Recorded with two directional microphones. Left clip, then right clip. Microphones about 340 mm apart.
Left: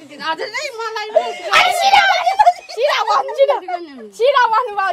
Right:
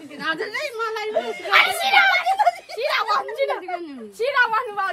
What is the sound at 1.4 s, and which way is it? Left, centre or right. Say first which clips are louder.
Speech: left 4 dB; centre.